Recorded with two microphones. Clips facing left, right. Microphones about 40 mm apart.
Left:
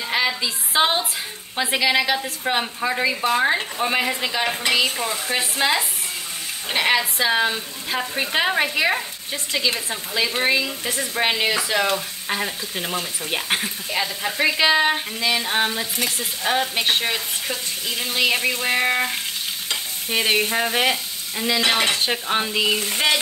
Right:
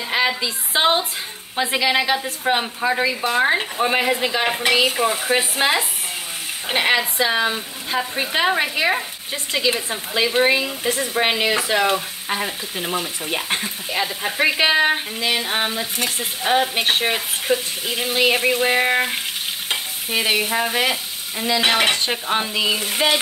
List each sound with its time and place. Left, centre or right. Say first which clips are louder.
0.1 s a woman's voice: right 2 dB; centre
1.6 s sizzle: right 1 dB; centre
7.9 s speech: right 1 dB; centre
9.5 s sizzle: right 2 dB; centre
13.3 s speech: left 1 dB; centre
14.2 s sizzle: right 1 dB; centre
20.1 s speech: even; centre
21.4 s sizzle: right 2 dB; centre
21.9 s speech: right 1 dB; centre
22.6 s sizzle: right 1 dB; centre